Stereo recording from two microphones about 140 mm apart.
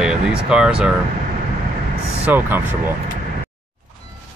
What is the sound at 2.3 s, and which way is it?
Speech, 15° right (ahead or behind).